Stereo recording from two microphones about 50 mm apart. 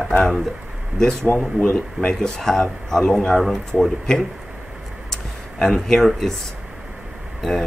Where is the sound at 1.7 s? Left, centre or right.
Left.